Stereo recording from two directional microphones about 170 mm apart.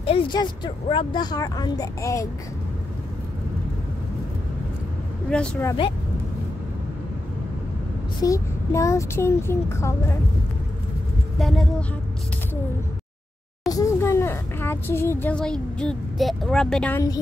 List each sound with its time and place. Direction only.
0.0 s speech: 35° left (ahead or behind); by 2.2 s 20° left (ahead or behind)
5.3 s speech: 5° left (ahead or behind)
8.2 s speech: 20° left (ahead or behind)
11.3 s a sound: centre (ahead or behind)
13.7 s speech: 20° left (ahead or behind)